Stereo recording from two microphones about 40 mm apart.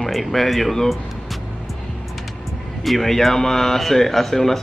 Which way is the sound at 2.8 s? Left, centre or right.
Centre.